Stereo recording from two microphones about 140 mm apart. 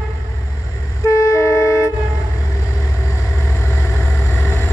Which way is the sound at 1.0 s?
20° left (ahead or behind).